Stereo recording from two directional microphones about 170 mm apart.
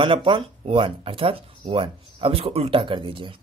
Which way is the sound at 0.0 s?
30° right (ahead or behind).